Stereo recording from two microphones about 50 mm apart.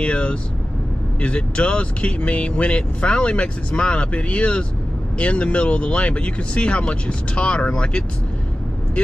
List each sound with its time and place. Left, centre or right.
0.0 s speech: left